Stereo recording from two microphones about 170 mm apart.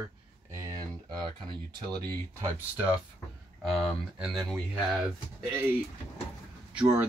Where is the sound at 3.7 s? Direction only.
Centre (ahead or behind).